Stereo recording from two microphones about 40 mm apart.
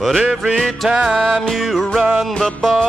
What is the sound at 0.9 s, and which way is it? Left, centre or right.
Music, right.